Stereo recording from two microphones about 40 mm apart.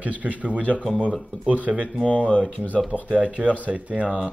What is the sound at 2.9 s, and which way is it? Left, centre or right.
Speech, right.